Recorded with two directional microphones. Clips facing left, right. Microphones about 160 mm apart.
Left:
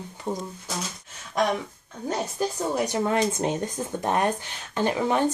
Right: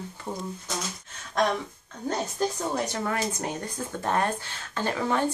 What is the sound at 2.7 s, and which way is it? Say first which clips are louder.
Speech: left 5 dB; 15° left (ahead or behind).